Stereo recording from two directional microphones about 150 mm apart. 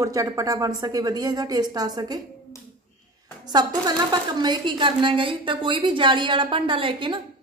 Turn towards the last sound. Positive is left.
turn(degrees=-35)  # may be behind; listen again after turning